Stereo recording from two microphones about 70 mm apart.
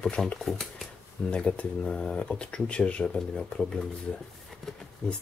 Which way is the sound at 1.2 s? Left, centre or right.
Centre.